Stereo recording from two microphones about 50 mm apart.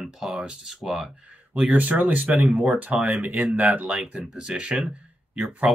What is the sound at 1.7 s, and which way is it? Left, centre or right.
Speech, right.